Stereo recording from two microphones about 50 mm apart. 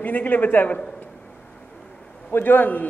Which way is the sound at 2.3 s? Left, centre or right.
Left.